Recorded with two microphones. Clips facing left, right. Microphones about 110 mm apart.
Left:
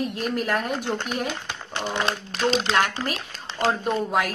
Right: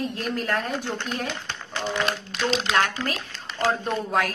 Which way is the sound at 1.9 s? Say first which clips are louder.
Left 1 dB; 30° left (ahead or behind).